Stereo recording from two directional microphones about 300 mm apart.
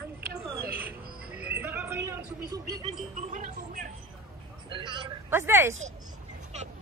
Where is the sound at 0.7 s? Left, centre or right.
Centre.